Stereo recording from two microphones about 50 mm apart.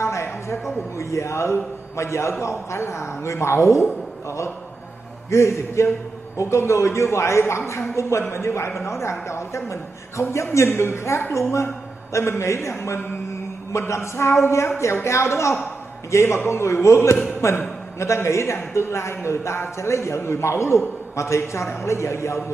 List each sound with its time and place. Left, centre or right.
0.0 s a man's voice: left
5.3 s a man's voice: left
8.8 s a man's voice: left